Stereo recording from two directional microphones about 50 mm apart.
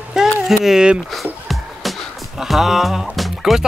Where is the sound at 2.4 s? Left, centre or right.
Centre.